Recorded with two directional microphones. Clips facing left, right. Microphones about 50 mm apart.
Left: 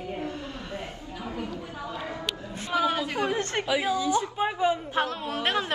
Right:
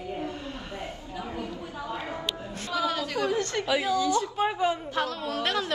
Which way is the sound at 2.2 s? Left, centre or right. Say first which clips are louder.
Even; left.